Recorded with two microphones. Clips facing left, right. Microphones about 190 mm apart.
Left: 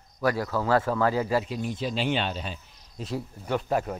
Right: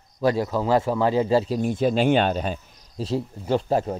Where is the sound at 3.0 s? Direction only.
30° right (ahead or behind).